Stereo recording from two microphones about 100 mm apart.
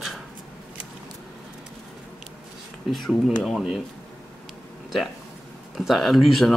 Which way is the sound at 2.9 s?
Centre (ahead or behind).